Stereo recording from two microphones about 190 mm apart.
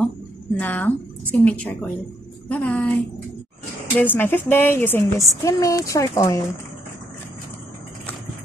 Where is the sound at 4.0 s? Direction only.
10° left (ahead or behind).